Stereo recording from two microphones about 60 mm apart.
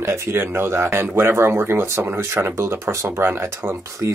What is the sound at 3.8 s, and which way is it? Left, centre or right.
Speech, right.